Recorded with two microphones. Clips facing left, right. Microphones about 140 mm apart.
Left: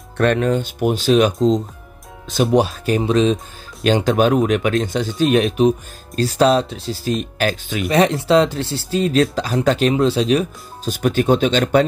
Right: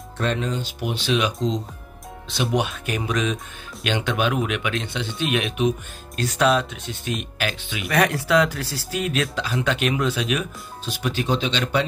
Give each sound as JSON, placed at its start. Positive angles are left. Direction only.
{"t": 0.2, "sound": "speech", "side_deg": 60}
{"t": 7.9, "sound": "speech", "side_deg": 25}
{"t": 10.9, "sound": "speech", "side_deg": 50}